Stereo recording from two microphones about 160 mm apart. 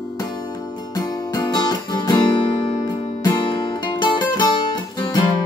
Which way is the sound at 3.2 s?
30° left (ahead or behind).